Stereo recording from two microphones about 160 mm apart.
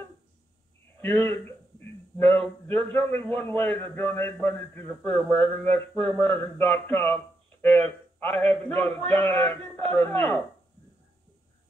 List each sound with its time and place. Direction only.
1.0 s a man's voice: 10° left (ahead or behind)